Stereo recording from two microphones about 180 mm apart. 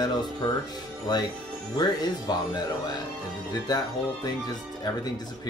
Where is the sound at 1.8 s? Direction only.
20° left (ahead or behind).